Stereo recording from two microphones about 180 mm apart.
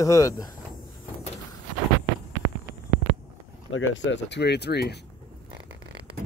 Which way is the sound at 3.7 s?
90° left.